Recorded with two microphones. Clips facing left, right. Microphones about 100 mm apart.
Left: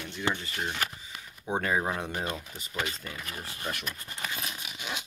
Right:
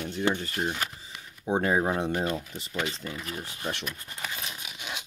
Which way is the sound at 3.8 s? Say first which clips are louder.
Right 1 dB; 5° right (ahead or behind).